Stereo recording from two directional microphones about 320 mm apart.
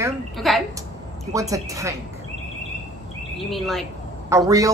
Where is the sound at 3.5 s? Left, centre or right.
Centre.